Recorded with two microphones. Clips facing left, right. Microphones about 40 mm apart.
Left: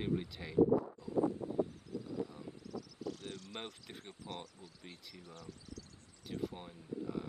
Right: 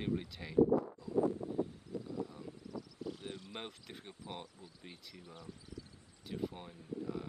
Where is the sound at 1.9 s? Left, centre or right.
Left.